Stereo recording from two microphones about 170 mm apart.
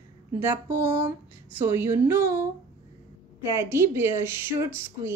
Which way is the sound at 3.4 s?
15° right (ahead or behind).